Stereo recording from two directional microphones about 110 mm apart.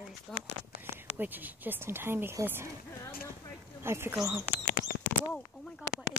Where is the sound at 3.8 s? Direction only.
20° right (ahead or behind).